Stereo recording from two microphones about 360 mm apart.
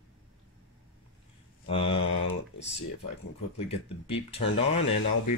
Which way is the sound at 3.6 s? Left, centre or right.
Centre.